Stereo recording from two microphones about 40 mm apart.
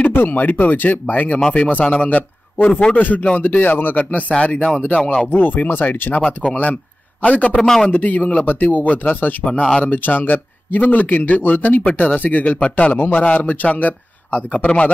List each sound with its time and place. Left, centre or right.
0.0 s a man's voice: left
3.0 s a man's voice: left
4.3 s speech: left
5.2 s a man's voice: left
6.5 s a man's voice: left
7.6 s a man's voice: centre
7.9 s a man's voice: left
9.4 s speech: left
9.8 s a man's voice: left
13.4 s a man's voice: left